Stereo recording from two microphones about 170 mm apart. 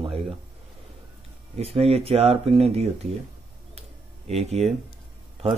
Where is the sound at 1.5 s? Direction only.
35° right (ahead or behind).